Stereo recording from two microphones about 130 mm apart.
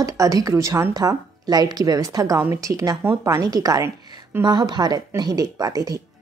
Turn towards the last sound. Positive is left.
turn(degrees=-30)  # may be behind; listen again after turning